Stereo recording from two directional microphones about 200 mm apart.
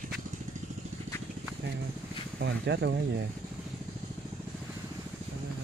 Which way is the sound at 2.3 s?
60° right (ahead or behind).